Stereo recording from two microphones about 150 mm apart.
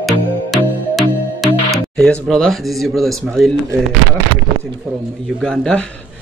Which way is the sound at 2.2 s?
Centre (ahead or behind).